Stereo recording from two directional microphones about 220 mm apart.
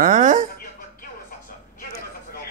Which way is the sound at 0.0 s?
35° right (ahead or behind).